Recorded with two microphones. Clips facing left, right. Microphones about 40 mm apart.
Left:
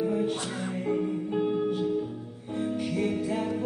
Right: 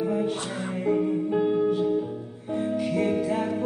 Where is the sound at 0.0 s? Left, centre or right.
Centre.